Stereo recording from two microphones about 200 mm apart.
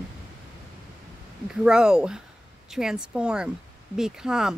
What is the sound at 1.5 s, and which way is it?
Speech, 5° right (ahead or behind).